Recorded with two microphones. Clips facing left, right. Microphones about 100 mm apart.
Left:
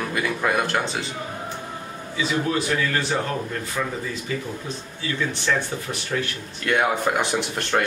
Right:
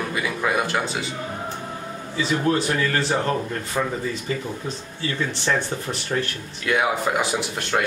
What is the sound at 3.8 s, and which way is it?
Speech, 35° right (ahead or behind).